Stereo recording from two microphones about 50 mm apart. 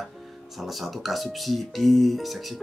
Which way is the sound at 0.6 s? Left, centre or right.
Centre.